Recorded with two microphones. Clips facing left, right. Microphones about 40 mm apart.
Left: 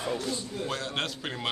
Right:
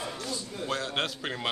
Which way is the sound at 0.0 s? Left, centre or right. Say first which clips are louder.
Left 5 dB; left.